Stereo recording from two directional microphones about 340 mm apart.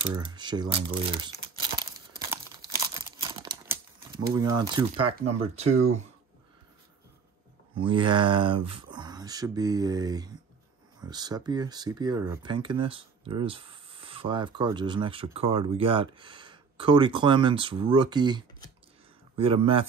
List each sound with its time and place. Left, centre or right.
0.0 s crumpling: centre
5.2 s speech: centre
7.7 s speech: centre